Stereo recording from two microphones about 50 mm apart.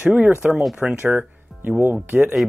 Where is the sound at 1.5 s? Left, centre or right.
Centre.